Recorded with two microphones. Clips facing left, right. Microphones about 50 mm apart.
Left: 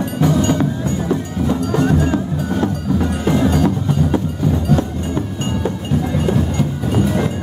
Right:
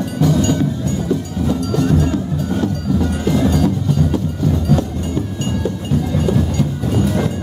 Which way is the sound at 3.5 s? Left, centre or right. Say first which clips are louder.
Even; centre.